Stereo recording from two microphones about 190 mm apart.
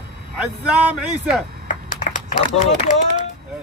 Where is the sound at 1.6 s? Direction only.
45° left (ahead or behind).